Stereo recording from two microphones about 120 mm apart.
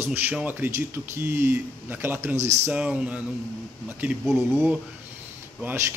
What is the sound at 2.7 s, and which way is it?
Speech, 10° right (ahead or behind).